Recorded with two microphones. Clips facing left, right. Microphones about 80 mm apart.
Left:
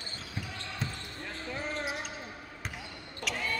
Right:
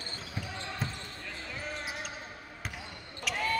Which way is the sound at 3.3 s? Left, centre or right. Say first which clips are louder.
Right 2 dB; centre.